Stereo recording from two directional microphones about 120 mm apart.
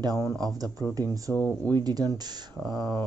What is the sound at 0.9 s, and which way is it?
Speech, 30° right (ahead or behind).